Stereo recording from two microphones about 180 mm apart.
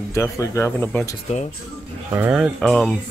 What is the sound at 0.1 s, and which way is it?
Speech, 15° left (ahead or behind).